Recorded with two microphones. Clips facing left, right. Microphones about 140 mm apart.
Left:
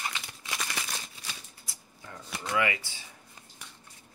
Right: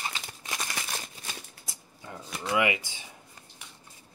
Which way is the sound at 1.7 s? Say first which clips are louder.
Right 2 dB; 20° right (ahead or behind).